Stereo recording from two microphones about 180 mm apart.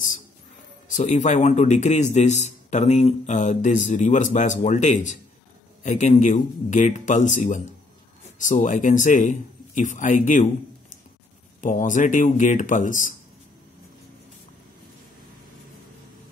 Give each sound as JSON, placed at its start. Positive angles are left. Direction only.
{"t": 0.8, "sound": "a man's voice", "side_deg": 40}
{"t": 11.6, "sound": "a man's voice", "side_deg": 45}